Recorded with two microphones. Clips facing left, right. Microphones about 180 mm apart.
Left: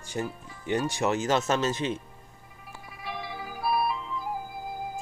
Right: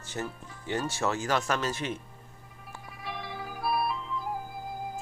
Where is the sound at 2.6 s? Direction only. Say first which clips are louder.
Left 1 dB; centre (ahead or behind).